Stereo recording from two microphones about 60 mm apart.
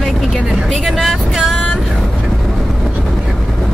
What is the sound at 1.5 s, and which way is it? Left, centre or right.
Vehicle, centre.